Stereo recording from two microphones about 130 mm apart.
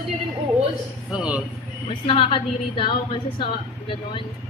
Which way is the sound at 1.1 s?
10° right (ahead or behind).